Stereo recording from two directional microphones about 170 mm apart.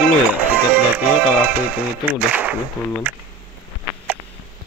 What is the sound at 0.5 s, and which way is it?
Speech, 10° right (ahead or behind).